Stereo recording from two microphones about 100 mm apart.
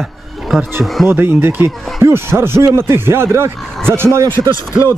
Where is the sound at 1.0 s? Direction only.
25° right (ahead or behind).